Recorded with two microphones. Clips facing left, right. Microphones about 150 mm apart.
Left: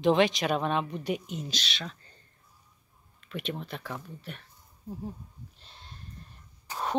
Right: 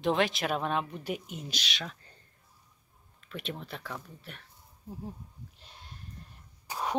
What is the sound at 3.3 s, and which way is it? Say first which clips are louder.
Speech: left 3 dB; 5° left (ahead or behind).